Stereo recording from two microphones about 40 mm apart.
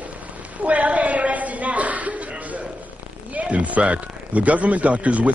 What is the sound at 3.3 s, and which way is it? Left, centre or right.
A woman's voice, right.